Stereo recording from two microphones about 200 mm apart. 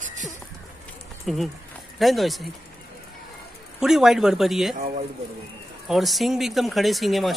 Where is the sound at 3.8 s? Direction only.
Centre (ahead or behind).